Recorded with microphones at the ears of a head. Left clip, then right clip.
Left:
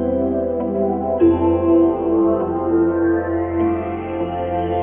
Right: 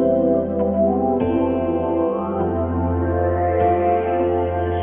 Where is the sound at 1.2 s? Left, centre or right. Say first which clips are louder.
Left 4 dB; left.